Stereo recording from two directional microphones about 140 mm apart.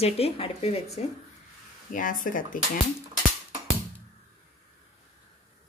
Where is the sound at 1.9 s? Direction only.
70° left (ahead or behind).